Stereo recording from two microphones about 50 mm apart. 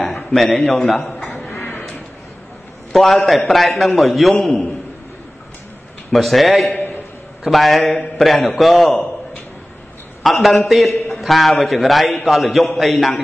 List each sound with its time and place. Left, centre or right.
0.0 s a man's voice: centre
1.5 s a sound: left
2.9 s a man's voice: centre
6.1 s a man's voice: centre
10.2 s a man's voice: centre